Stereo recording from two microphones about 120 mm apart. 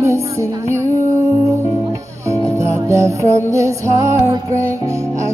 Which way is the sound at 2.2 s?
25° right (ahead or behind).